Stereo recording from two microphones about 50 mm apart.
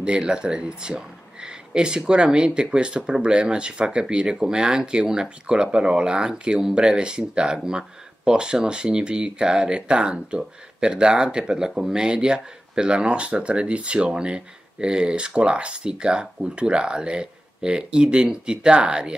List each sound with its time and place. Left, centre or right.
0.0 s speech: centre